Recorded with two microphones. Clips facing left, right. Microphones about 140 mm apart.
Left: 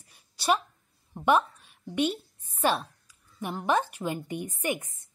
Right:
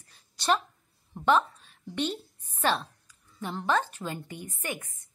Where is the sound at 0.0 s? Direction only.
10° left (ahead or behind).